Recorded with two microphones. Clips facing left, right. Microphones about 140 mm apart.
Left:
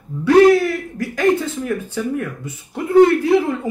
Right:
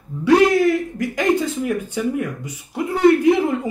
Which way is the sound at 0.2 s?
20° right (ahead or behind).